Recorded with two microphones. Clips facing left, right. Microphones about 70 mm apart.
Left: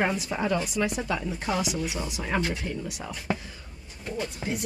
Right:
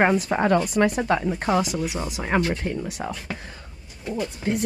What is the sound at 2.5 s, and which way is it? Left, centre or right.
Speech, right.